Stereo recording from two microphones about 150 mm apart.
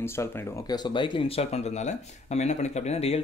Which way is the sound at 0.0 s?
15° left (ahead or behind).